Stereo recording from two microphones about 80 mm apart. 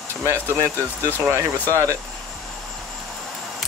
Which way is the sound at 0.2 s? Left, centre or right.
Right.